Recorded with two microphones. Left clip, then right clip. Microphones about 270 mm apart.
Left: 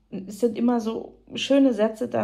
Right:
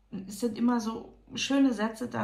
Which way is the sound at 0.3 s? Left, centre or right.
Centre.